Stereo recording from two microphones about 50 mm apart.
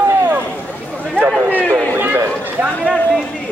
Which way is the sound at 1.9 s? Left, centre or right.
Right.